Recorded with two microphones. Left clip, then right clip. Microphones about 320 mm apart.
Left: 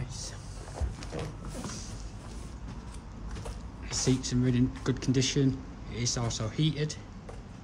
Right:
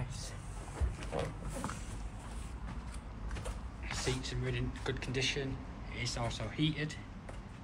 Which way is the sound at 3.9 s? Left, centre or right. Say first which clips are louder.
Left 8 dB; centre.